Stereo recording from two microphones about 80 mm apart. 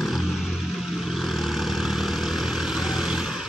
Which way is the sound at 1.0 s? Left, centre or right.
Centre.